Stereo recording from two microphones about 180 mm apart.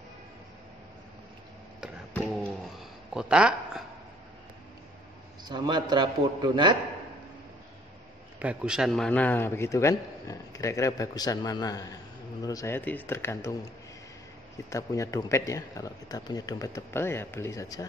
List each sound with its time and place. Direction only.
2.1 s a sound: centre (ahead or behind)
5.4 s a man's voice: 25° right (ahead or behind)
8.4 s a man's voice: 5° right (ahead or behind); by 13.6 s 15° left (ahead or behind)
14.7 s a man's voice: 15° left (ahead or behind)